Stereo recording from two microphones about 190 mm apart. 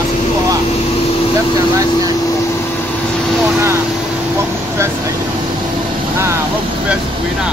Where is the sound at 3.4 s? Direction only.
15° right (ahead or behind).